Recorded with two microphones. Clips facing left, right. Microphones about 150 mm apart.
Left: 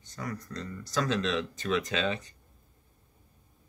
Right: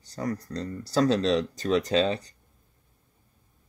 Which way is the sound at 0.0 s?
35° right (ahead or behind).